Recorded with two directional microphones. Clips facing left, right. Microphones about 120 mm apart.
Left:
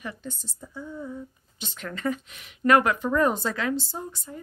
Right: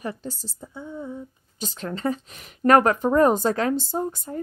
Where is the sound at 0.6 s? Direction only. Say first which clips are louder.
Right 2 dB; 20° right (ahead or behind).